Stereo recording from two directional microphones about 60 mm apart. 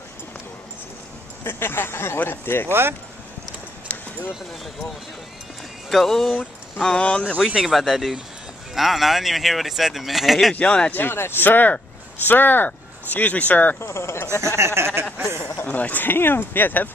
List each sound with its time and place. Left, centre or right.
1.4 s speech: left
2.7 s speech: right
5.9 s speech: centre
7.3 s speech: centre
10.5 s speech: centre
10.9 s speech: left
13.7 s speech: left
14.6 s a sound: right
15.6 s speech: left